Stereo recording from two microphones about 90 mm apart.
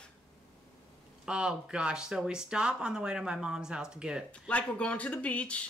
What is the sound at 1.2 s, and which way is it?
Speech, 10° right (ahead or behind).